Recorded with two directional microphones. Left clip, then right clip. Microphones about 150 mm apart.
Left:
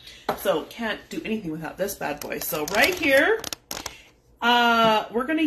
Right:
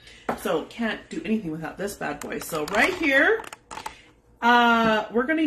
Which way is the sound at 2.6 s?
5° right (ahead or behind).